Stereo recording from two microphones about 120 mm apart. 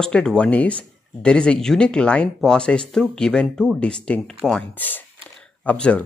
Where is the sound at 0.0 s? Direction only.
5° left (ahead or behind).